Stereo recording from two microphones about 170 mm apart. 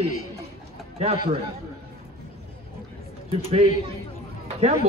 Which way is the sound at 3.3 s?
35° right (ahead or behind).